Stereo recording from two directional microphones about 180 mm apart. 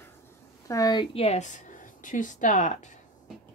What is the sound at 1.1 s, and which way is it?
Speech, 35° left (ahead or behind).